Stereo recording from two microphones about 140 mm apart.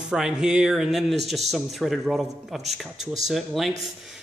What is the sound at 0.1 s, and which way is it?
Speech, 5° right (ahead or behind).